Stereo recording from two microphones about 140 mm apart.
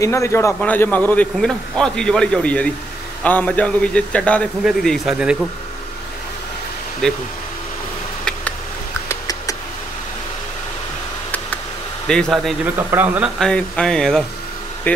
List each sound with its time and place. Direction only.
0.0 s a man's voice: 20° left (ahead or behind)
0.6 s a man's voice: 10° left (ahead or behind); by 5.5 s 5° right (ahead or behind)
7.0 s speech: 5° left (ahead or behind)
9.1 s a sound: 25° left (ahead or behind)
12.1 s speech: 5° left (ahead or behind)
12.7 s speech: 15° right (ahead or behind)
13.4 s speech: 5° left (ahead or behind)